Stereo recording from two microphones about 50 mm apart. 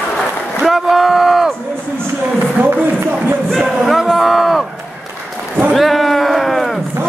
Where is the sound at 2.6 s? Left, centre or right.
Right.